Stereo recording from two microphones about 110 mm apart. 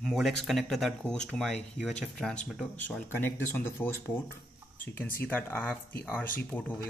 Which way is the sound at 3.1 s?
20° left (ahead or behind).